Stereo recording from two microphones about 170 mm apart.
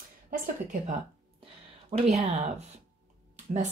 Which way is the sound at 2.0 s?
35° right (ahead or behind).